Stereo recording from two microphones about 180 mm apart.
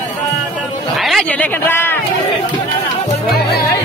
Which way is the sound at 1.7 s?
10° left (ahead or behind).